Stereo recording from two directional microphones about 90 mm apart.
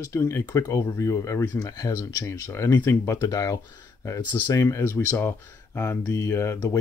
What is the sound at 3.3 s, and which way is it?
Speech, 45° left (ahead or behind).